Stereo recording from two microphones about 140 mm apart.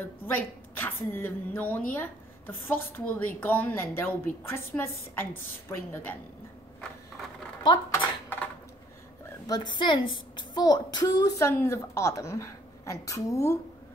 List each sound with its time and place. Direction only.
0.3 s a woman's voice: 15° left (ahead or behind)
7.6 s typewriter: 35° left (ahead or behind)
9.5 s a woman's voice: 35° left (ahead or behind)